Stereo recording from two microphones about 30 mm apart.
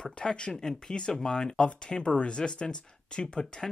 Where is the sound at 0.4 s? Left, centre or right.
Left.